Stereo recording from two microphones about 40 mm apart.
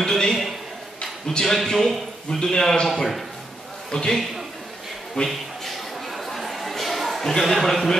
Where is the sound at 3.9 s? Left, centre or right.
Centre.